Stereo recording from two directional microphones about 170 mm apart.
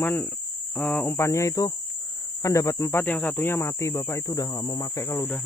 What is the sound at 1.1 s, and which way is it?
Speech, 15° left (ahead or behind).